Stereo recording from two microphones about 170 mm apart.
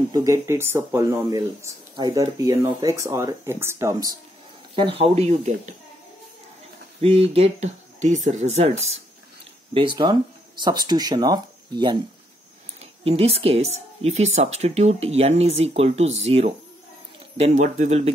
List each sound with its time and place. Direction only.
0.1 s speech: 20° right (ahead or behind)
4.7 s speech: 30° right (ahead or behind)
7.0 s speech: 35° right (ahead or behind)
9.8 s speech: 30° right (ahead or behind)
13.0 s speech: 35° right (ahead or behind)